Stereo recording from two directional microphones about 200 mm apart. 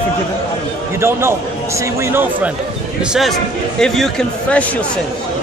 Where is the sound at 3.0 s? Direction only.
Centre (ahead or behind).